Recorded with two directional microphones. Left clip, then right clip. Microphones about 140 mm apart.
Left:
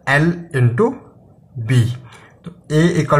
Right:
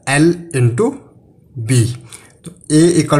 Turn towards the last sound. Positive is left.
turn(degrees=-25)  # may be behind; listen again after turning